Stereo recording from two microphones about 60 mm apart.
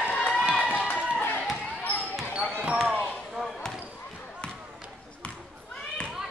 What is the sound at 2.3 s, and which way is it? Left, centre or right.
Basketball bounce, right.